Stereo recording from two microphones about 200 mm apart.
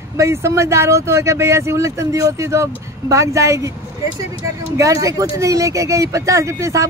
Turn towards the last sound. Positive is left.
turn(degrees=-15)  # may be behind; listen again after turning